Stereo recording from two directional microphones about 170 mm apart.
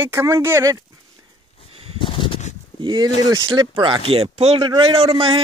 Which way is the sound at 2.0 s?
30° left (ahead or behind).